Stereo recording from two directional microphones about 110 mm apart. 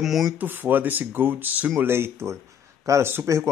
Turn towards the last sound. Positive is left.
turn(degrees=-25)  # may be behind; listen again after turning